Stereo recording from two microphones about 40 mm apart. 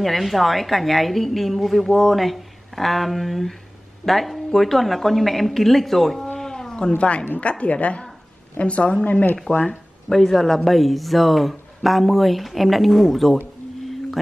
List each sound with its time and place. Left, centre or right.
0.0 s speech: centre
6.3 s a sound: centre
7.0 s a woman's voice: left
9.7 s speech: centre